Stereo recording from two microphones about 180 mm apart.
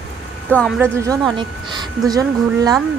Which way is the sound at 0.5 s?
5° left (ahead or behind).